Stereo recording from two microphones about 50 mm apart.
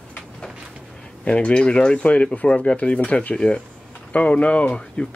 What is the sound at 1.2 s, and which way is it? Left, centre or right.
Speech, left.